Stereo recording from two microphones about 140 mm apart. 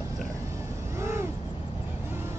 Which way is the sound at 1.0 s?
20° right (ahead or behind).